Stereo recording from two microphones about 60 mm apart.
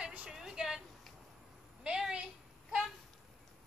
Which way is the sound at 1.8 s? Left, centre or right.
Centre.